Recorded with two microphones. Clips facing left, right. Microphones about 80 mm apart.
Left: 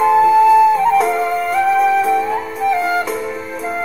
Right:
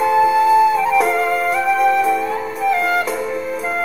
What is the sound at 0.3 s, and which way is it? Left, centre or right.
Music, left.